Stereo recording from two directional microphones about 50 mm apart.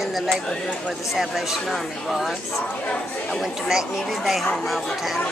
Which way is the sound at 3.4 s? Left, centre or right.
Centre.